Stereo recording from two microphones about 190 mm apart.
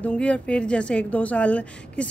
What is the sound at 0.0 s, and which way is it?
A woman's voice, 5° left (ahead or behind).